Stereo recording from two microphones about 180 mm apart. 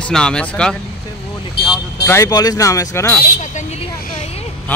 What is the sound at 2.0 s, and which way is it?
Speech, 15° left (ahead or behind).